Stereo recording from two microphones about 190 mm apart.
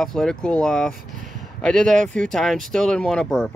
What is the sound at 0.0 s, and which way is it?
Speech, centre (ahead or behind).